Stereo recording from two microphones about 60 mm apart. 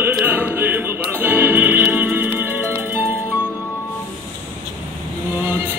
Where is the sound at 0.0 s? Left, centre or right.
Right.